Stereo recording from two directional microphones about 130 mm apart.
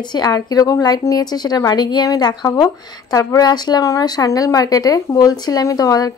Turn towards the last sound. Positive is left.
turn(degrees=30)  # may be behind; listen again after turning